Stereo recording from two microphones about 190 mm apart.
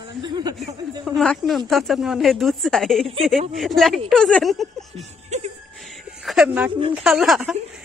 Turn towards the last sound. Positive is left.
turn(degrees=0)  # may be behind; listen again after turning